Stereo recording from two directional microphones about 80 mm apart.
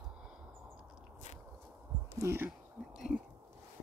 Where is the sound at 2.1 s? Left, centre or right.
Right.